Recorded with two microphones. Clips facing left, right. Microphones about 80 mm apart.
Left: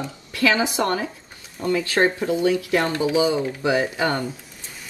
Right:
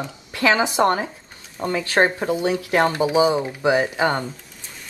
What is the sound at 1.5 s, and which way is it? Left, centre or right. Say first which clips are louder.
Speech: right 1 dB; right.